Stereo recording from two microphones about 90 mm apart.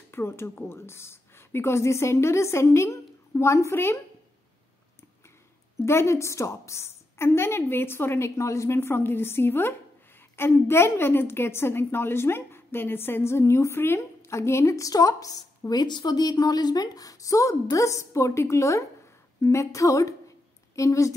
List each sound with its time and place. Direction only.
0.1 s a woman's voice: 30° left (ahead or behind)
5.8 s a woman's voice: 30° left (ahead or behind)